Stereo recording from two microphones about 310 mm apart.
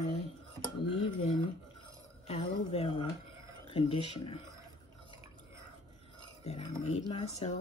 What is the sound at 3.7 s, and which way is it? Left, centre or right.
Speech, centre.